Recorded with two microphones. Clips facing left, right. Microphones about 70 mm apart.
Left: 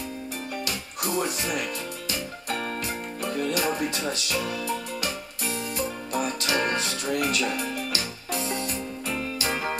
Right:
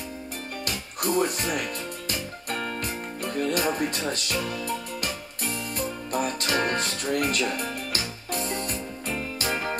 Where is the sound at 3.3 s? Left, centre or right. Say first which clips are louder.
Right 1 dB; right.